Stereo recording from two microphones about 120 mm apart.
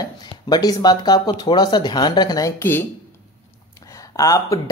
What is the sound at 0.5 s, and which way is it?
Speech, 35° left (ahead or behind).